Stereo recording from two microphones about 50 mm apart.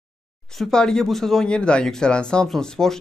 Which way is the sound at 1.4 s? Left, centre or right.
Centre.